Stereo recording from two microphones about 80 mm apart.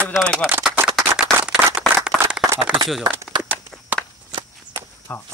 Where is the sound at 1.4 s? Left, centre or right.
Centre.